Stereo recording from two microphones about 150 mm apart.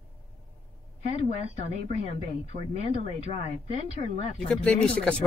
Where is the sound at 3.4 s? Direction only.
45° left (ahead or behind).